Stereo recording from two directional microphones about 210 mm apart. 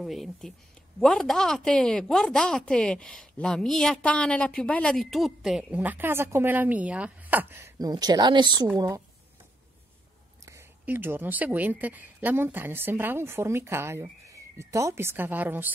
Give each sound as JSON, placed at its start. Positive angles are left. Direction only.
{"t": 0.0, "sound": "a woman's voice", "side_deg": 0}
{"t": 10.4, "sound": "speech", "side_deg": -10}